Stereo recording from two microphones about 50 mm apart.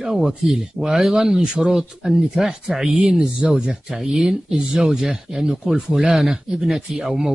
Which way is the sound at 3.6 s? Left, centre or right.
Centre.